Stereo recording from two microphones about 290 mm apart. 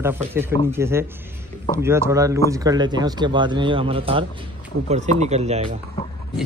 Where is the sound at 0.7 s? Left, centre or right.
Centre.